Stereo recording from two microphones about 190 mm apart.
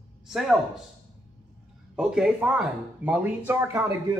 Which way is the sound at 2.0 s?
5° right (ahead or behind).